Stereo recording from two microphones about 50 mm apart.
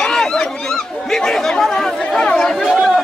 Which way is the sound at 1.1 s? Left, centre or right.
Centre.